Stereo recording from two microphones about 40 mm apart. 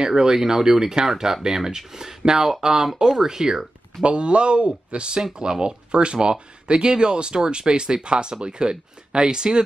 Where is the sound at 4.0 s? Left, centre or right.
Right.